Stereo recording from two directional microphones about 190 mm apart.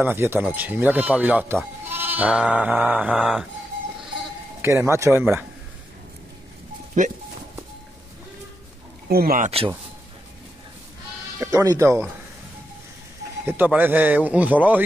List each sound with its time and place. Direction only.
0.0 s a man's voice: 10° right (ahead or behind)
1.9 s sheep: 10° right (ahead or behind)
4.6 s a man's voice: 15° right (ahead or behind)
9.1 s speech: 50° right (ahead or behind)
11.3 s speech: 15° right (ahead or behind)
13.5 s a man's voice: 10° right (ahead or behind)